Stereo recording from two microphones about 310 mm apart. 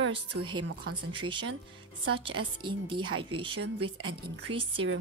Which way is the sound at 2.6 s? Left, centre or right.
Centre.